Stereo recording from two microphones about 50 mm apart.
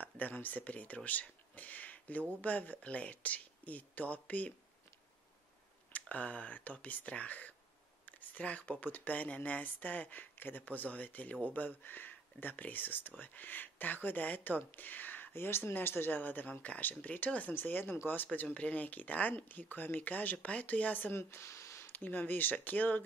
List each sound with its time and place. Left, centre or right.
0.0 s speech: left
5.9 s speech: left
8.0 s a sound: left
8.8 s speech: left
15.3 s speech: left
21.1 s speech: left
21.9 s speech: left